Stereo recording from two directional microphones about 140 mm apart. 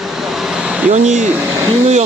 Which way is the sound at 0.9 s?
55° right (ahead or behind).